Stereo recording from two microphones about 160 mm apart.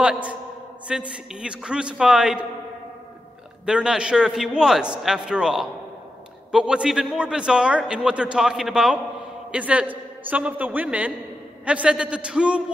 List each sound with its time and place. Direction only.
0.0 s a sound: 5° right (ahead or behind)
0.8 s a man's voice: 5° right (ahead or behind)
3.6 s a man's voice: 5° right (ahead or behind)